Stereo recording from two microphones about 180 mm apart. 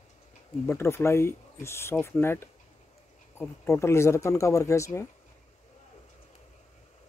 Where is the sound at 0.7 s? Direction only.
15° left (ahead or behind).